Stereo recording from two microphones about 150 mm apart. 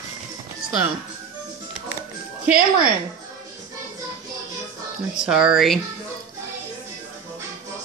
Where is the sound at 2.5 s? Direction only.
75° right (ahead or behind).